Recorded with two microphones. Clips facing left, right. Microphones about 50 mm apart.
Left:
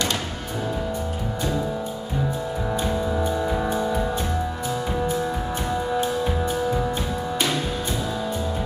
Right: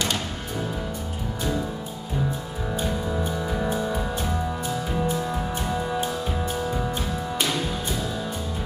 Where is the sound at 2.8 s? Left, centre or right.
Centre.